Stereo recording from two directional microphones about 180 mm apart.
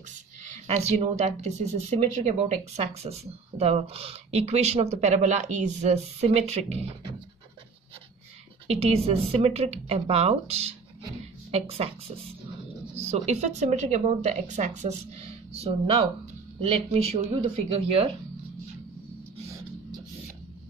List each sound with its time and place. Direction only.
0.1 s speech: 40° right (ahead or behind)
8.6 s speech: 35° right (ahead or behind)
13.1 s speech: 40° right (ahead or behind)